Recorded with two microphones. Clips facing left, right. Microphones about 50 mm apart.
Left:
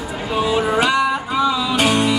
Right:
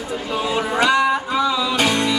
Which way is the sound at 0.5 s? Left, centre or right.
Centre.